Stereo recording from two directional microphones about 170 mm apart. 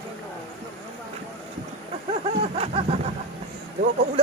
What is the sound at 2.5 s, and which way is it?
Vehicle, 35° right (ahead or behind).